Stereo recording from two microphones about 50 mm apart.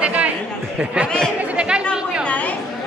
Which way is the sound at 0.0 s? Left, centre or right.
Right.